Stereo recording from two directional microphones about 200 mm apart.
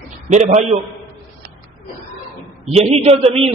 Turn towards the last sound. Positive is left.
turn(degrees=-30)  # may be behind; listen again after turning